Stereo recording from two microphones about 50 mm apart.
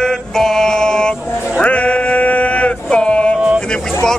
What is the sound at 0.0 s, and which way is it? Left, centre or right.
Mantra, centre.